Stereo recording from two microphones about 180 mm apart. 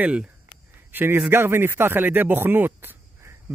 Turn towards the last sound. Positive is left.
turn(degrees=-10)  # may be behind; listen again after turning